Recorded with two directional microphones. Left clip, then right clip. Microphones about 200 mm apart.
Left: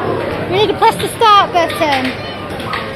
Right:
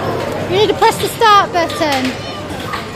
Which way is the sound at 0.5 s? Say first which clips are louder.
Even; 15° right (ahead or behind).